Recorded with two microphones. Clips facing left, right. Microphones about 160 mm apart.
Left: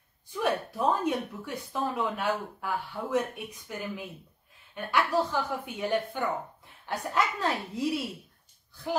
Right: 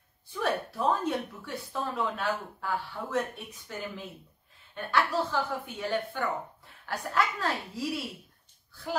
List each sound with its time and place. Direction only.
0.4 s a woman's voice: 15° left (ahead or behind)